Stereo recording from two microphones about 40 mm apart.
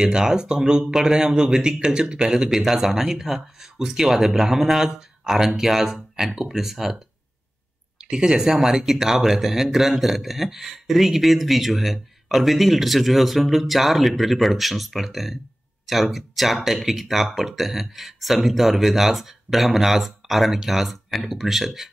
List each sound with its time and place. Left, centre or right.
0.0 s speech: centre
8.0 s a man's voice: centre